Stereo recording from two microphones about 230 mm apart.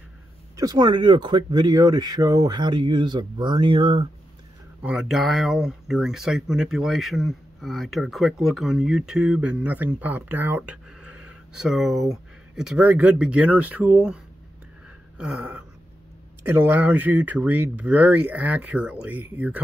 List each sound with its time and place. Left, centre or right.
0.6 s speech: centre
4.8 s speech: centre